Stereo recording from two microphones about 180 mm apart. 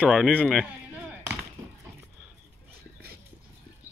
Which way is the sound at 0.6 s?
10° right (ahead or behind).